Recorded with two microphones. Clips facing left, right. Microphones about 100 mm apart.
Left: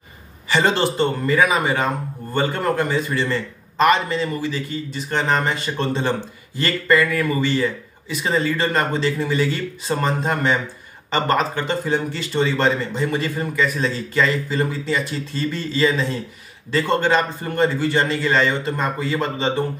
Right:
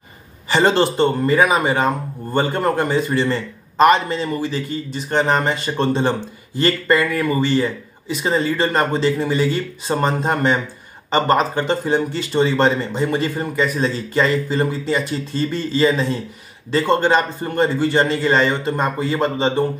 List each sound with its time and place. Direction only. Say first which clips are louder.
0.5 s speech: right 3 dB; 30° right (ahead or behind)